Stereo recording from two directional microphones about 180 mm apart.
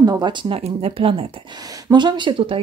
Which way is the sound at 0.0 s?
20° right (ahead or behind).